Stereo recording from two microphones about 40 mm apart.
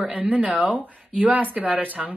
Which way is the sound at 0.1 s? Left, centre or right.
Right.